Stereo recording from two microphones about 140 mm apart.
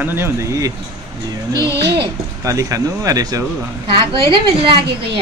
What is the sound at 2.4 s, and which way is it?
A man's voice, 25° right (ahead or behind).